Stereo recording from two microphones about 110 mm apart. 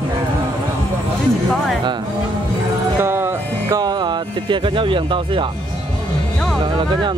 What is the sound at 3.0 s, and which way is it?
Music, 20° right (ahead or behind).